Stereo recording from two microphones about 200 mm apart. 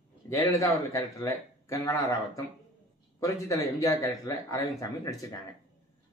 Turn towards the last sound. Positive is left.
turn(degrees=15)  # may be behind; listen again after turning